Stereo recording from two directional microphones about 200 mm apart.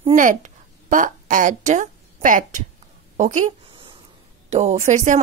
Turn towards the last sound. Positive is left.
turn(degrees=-35)  # may be behind; listen again after turning